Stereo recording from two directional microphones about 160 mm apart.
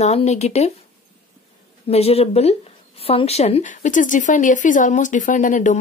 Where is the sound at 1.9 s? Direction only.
40° left (ahead or behind).